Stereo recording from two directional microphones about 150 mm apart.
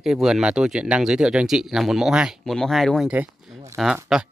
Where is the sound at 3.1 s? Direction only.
20° right (ahead or behind).